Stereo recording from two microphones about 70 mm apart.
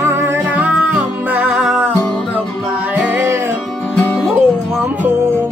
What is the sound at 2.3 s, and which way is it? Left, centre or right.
Music, right.